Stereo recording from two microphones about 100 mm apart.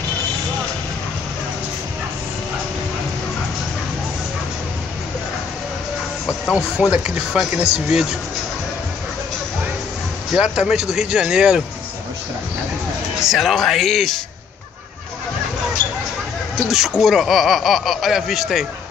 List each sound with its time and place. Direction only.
6.5 s speech: 10° right (ahead or behind)
10.4 s speech: 5° right (ahead or behind)
13.2 s speech: 5° right (ahead or behind)
16.6 s speech: centre (ahead or behind)